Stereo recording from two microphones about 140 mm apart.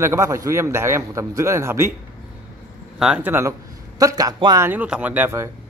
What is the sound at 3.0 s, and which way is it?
Speech, 5° right (ahead or behind).